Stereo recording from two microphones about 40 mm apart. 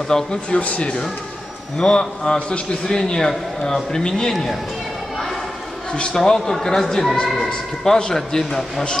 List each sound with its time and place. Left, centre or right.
0.3 s speech: left
1.8 s speech: centre
2.3 s speech: left
2.9 s speech: centre
6.1 s speech: centre